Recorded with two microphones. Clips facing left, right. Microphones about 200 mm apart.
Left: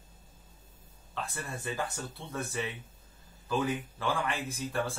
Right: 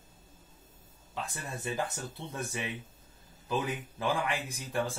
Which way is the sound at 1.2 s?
20° right (ahead or behind).